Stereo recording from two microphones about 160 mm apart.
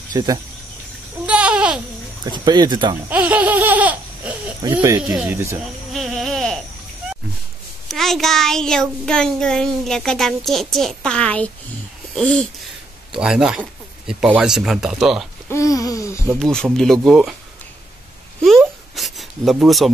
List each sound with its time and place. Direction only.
0.1 s speech: 25° right (ahead or behind)
1.2 s babbling: 5° right (ahead or behind)
2.3 s speech: 25° right (ahead or behind)
3.1 s laughter: 10° right (ahead or behind)
5.9 s baby cry: centre (ahead or behind)
7.9 s a child's voice: centre (ahead or behind)
15.5 s a sound: 20° left (ahead or behind)
16.3 s a child's voice: 5° left (ahead or behind)
18.9 s a sound: centre (ahead or behind)